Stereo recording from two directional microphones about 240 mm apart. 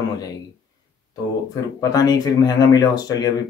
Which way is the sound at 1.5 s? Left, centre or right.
Centre.